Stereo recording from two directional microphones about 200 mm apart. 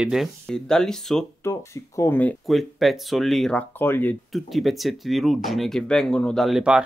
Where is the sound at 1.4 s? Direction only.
15° left (ahead or behind).